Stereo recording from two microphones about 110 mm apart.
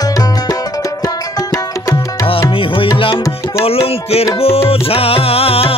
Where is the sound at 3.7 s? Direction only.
60° left (ahead or behind).